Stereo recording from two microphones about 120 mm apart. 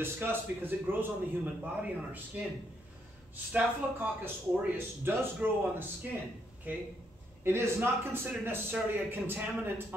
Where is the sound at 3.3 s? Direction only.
15° right (ahead or behind).